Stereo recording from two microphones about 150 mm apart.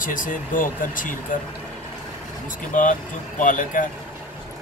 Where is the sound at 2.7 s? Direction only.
55° left (ahead or behind).